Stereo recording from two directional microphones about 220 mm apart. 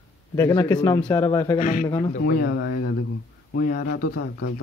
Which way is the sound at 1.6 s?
35° left (ahead or behind).